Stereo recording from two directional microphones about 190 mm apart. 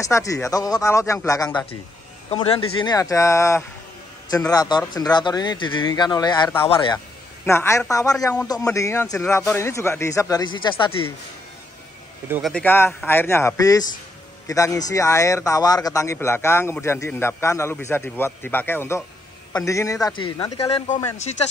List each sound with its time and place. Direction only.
0.0 s speech: 15° left (ahead or behind)
7.4 s speech: 15° left (ahead or behind)
12.3 s speech: centre (ahead or behind); by 20.5 s 25° left (ahead or behind)
20.6 s speech: 35° left (ahead or behind)